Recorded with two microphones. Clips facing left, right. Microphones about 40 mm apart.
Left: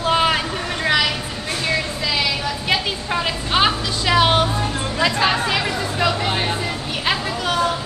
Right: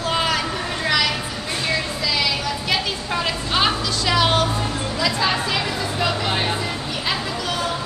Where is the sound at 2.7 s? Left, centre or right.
Centre.